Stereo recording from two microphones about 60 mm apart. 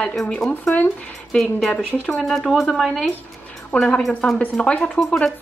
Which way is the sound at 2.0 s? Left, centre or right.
Centre.